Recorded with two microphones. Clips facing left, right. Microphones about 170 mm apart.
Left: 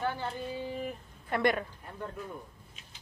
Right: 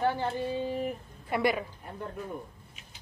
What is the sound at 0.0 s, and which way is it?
Speech, 35° right (ahead or behind).